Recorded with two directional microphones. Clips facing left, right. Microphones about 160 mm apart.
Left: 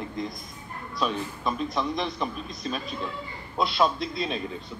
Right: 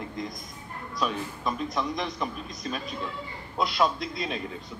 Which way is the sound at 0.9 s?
25° left (ahead or behind).